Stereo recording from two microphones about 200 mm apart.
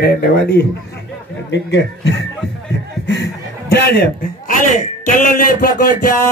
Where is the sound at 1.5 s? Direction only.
60° left (ahead or behind).